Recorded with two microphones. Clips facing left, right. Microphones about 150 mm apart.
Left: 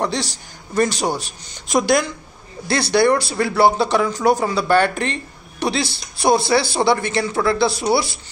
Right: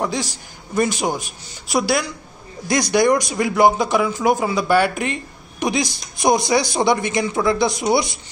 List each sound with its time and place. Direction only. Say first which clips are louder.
0.0 s speech: left 1 dB; 10° right (ahead or behind)